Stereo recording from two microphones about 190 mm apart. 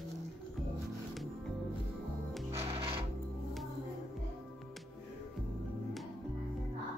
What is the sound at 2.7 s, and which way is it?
Music, 30° right (ahead or behind).